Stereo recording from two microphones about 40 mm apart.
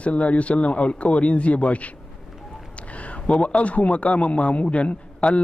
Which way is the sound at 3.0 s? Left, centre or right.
Left.